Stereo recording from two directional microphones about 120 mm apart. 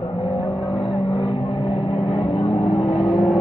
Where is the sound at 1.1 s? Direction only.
50° left (ahead or behind).